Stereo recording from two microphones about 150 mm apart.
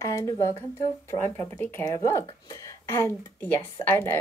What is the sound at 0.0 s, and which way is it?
Speech, 20° left (ahead or behind).